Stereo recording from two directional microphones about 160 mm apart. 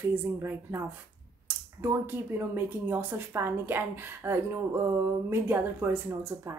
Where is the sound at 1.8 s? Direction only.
15° right (ahead or behind).